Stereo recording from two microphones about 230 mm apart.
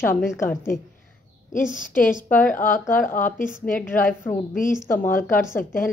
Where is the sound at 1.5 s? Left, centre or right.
Left.